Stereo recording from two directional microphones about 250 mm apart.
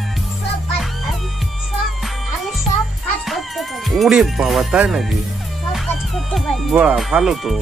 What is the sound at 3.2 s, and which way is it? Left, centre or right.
Speech, centre.